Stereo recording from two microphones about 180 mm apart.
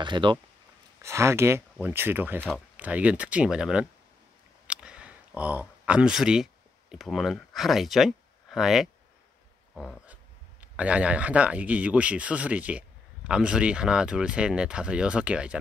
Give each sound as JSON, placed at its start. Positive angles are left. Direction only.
{"t": 0.0, "sound": "speech", "side_deg": -25}
{"t": 1.0, "sound": "speech", "side_deg": -15}
{"t": 4.6, "sound": "a sound", "side_deg": -5}
{"t": 9.8, "sound": "speech", "side_deg": 0}